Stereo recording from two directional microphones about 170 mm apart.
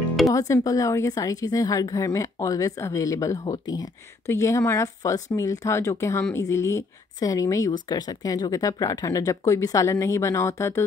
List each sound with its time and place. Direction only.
0.3 s a woman's voice: 20° left (ahead or behind)